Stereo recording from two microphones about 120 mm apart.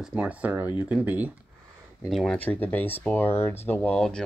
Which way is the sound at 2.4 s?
15° left (ahead or behind).